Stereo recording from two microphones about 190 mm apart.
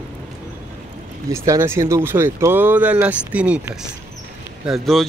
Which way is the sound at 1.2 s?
15° right (ahead or behind).